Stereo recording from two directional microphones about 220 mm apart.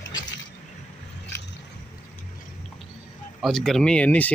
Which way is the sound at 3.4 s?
Centre (ahead or behind).